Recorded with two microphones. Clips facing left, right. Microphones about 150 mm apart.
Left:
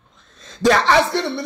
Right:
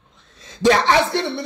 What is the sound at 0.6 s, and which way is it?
Speech, 20° right (ahead or behind).